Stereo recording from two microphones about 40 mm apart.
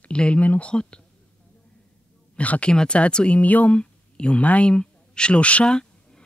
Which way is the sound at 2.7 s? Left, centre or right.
Centre.